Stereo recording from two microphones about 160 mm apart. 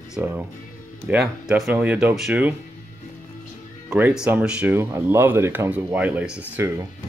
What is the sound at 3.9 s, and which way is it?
Speech, 5° right (ahead or behind).